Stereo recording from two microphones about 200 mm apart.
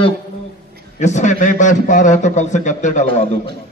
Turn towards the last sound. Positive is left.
turn(degrees=35)  # may be behind; listen again after turning